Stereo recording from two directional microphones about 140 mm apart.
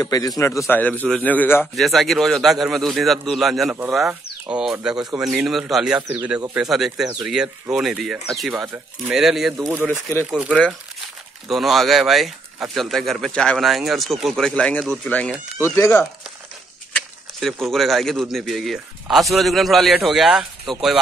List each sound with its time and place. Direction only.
0.0 s a man's voice: 25° left (ahead or behind)
1.8 s speech: centre (ahead or behind)
15.6 s a man's voice: 20° left (ahead or behind)
16.9 s speech: centre (ahead or behind)